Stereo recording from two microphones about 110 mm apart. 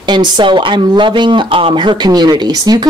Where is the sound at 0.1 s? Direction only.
45° right (ahead or behind).